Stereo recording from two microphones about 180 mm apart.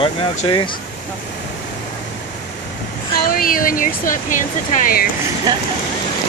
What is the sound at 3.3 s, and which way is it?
Speech, 55° left (ahead or behind).